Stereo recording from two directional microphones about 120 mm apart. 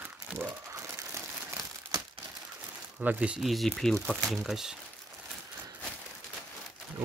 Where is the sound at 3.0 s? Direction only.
10° right (ahead or behind).